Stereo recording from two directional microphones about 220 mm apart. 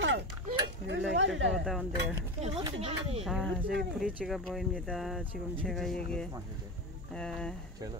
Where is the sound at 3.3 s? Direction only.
Centre (ahead or behind).